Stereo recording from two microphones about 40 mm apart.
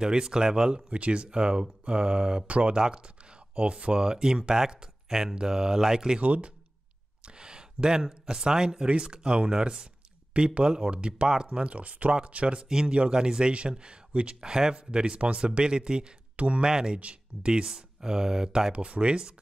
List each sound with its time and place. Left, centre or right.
0.0 s speech: centre
0.9 s speech: right; by 6.1 s centre
6.1 s speech: right
7.2 s a sound: right
8.8 s speech: right
12.5 s speech: centre
18.7 s speech: right